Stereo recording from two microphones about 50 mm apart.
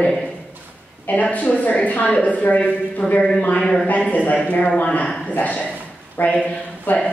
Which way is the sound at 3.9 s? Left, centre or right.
Left.